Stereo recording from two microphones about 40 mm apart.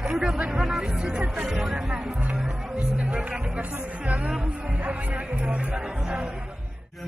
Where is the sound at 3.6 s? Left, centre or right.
Right.